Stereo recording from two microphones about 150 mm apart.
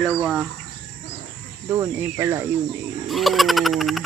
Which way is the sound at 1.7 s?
15° right (ahead or behind).